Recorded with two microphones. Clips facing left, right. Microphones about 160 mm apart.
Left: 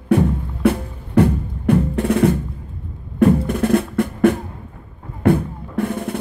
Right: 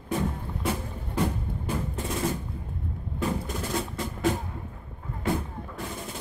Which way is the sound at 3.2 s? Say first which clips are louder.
Left 15 dB; 60° left (ahead or behind).